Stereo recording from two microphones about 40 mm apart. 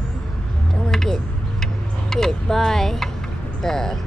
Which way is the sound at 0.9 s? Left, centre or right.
Centre.